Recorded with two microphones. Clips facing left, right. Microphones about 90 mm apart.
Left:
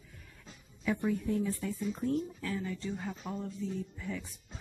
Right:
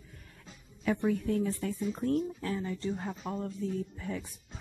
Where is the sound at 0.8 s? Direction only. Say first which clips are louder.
Right 2 dB; 55° right (ahead or behind).